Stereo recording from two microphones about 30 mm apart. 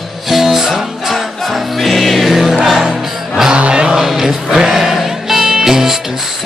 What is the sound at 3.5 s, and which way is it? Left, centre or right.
Music, right.